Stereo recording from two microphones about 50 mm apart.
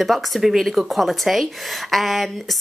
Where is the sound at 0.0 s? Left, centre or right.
Centre.